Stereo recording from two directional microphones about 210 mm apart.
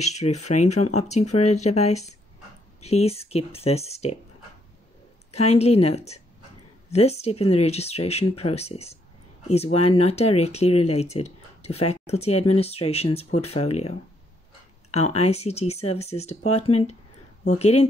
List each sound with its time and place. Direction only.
0.0 s speech: 30° left (ahead or behind)
5.3 s speech: 30° left (ahead or behind)
15.1 s speech: 30° left (ahead or behind)